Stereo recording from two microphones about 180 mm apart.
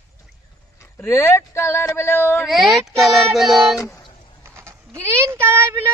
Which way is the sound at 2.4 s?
Centre (ahead or behind).